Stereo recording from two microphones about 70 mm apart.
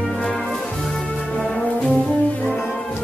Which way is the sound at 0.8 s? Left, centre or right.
Centre.